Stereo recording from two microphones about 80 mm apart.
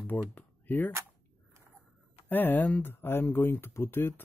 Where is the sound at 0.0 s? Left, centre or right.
Left.